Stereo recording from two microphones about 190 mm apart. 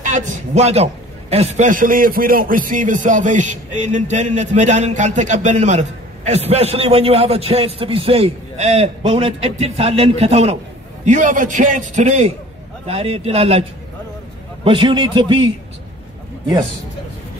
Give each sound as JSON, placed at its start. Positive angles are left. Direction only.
{"t": 0.0, "sound": "a man's voice", "side_deg": -40}